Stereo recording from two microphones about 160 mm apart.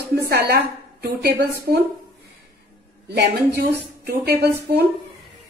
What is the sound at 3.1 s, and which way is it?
Speech, 90° right.